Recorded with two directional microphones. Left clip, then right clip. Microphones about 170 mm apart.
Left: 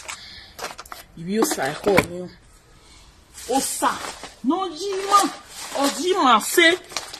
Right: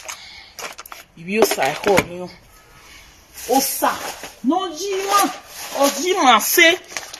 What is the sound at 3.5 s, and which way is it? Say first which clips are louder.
Speech: right 5 dB; 30° right (ahead or behind).